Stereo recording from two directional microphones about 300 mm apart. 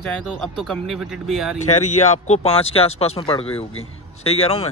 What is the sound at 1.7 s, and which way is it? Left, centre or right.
A man's voice, left.